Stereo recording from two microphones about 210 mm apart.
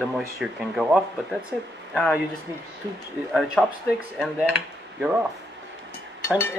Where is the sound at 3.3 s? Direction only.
Centre (ahead or behind).